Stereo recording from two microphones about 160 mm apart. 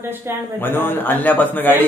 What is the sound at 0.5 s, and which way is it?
Speech, 15° left (ahead or behind).